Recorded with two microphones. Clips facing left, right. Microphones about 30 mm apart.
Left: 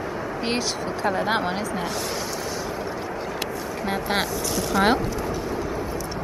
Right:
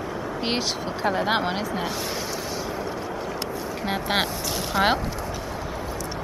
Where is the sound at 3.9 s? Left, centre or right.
Centre.